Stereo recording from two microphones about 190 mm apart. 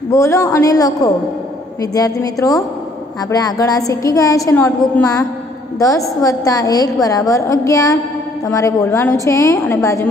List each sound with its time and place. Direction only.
0.1 s a woman's voice: 15° left (ahead or behind)